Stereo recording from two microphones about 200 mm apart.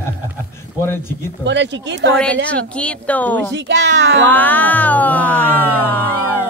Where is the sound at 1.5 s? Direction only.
65° right (ahead or behind).